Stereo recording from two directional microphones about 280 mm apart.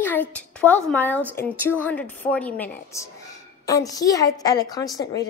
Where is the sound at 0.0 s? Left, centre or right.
Centre.